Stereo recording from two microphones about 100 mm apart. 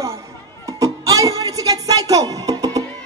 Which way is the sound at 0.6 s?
35° right (ahead or behind).